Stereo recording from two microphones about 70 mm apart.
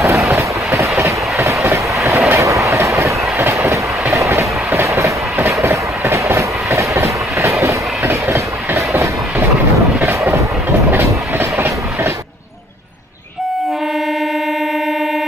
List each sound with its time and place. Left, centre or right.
0.0 s vehicle: right
1.4 s train: right
9.9 s vehicle: right
10.9 s train: right